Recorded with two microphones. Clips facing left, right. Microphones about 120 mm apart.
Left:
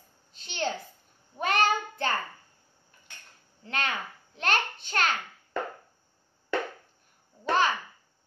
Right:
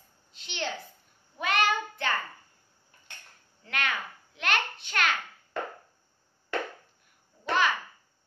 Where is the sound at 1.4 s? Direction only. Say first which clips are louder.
Left 2 dB; 40° left (ahead or behind).